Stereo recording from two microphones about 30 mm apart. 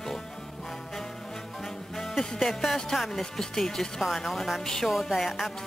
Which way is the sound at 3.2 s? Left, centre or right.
Centre.